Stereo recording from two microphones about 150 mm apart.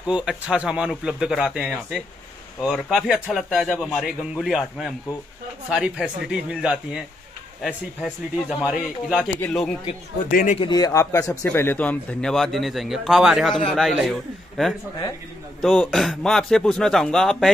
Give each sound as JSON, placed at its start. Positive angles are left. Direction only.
{"t": 0.0, "sound": "a man's voice", "side_deg": -5}
{"t": 9.2, "sound": "speech", "side_deg": 10}
{"t": 10.3, "sound": "speech", "side_deg": 60}
{"t": 10.6, "sound": "a man's voice", "side_deg": 25}